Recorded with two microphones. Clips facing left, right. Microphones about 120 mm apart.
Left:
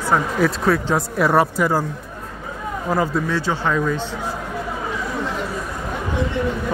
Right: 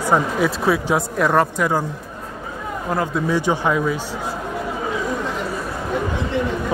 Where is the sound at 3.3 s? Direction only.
15° right (ahead or behind).